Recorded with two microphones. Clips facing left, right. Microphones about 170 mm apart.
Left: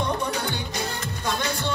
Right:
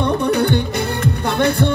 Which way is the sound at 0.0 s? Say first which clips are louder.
Right 10 dB; 60° right (ahead or behind).